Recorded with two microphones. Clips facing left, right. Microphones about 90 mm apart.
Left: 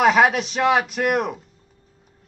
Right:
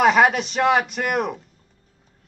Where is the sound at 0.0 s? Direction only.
Centre (ahead or behind).